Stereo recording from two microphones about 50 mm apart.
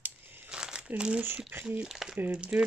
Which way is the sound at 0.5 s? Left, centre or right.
Centre.